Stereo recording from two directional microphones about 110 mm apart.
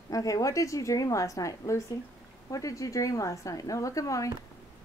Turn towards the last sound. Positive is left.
turn(degrees=30)  # may be behind; listen again after turning